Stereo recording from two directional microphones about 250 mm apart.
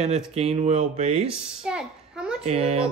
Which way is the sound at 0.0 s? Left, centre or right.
Right.